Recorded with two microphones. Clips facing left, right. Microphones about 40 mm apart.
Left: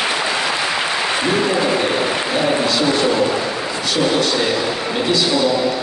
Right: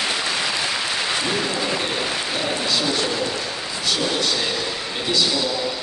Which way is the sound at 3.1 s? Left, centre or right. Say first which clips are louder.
Left 7 dB; left.